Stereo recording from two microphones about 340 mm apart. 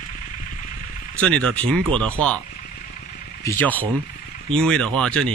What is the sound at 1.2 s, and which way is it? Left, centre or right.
Speech, centre.